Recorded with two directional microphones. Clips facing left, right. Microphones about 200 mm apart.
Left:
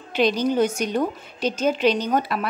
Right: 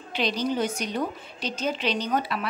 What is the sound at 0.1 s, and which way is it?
A woman's voice, 50° left (ahead or behind).